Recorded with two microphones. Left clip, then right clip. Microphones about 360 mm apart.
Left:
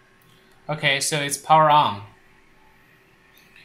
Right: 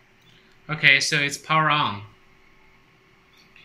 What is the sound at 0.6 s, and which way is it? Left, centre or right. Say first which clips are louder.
Speech: right 4 dB; centre.